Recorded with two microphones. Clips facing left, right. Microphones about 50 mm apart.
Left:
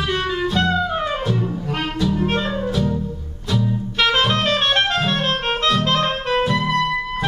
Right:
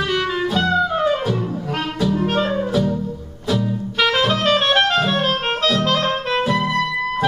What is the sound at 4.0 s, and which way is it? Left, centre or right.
Music, centre.